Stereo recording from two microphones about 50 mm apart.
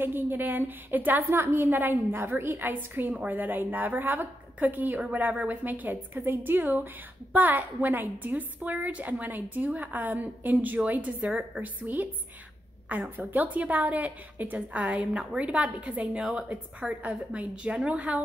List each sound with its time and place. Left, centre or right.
0.0 s a woman's voice: right
1.3 s a woman's voice: right
3.1 s a woman's voice: right